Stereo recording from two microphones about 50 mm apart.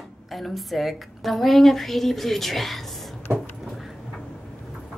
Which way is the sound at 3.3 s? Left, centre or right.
Right.